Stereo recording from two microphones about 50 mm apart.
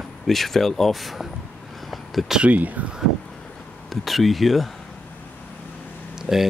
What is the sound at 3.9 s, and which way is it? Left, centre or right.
Speech, centre.